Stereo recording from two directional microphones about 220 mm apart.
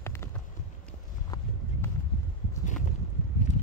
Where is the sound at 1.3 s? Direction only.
10° left (ahead or behind).